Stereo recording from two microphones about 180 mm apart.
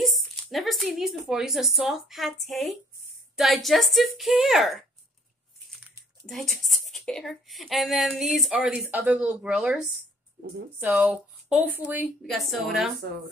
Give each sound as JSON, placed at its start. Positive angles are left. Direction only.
{"t": 0.0, "sound": "a woman's voice", "side_deg": 0}
{"t": 6.2, "sound": "a woman's voice", "side_deg": 0}
{"t": 10.8, "sound": "a woman's voice", "side_deg": -10}